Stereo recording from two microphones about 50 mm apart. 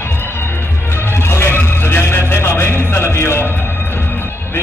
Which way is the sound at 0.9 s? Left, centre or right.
Left.